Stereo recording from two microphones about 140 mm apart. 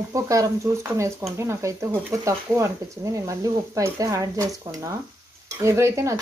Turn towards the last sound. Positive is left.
turn(degrees=-20)  # may be behind; listen again after turning